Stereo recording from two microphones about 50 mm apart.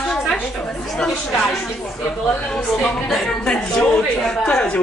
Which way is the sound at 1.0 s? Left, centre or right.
Centre.